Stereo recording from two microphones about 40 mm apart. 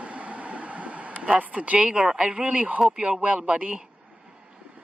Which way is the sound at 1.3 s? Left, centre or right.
Right.